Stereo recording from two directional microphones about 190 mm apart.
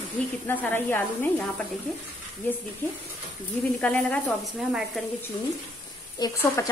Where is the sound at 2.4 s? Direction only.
10° left (ahead or behind).